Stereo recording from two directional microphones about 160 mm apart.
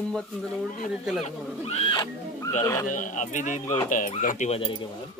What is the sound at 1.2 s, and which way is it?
Speech, 40° left (ahead or behind).